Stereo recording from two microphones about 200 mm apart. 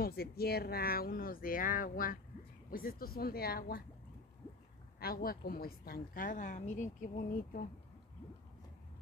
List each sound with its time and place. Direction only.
0.0 s a woman's voice: 50° left (ahead or behind)
5.0 s a woman's voice: 50° left (ahead or behind)